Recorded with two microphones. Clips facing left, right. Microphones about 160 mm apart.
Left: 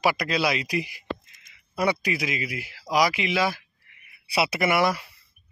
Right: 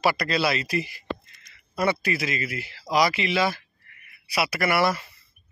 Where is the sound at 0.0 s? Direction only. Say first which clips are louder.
Even; 10° left (ahead or behind).